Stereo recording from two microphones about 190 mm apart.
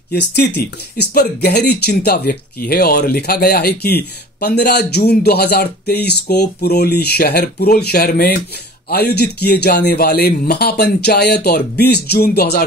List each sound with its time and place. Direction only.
0.1 s speech: 60° left (ahead or behind)